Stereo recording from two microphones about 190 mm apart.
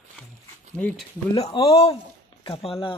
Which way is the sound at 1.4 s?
30° left (ahead or behind).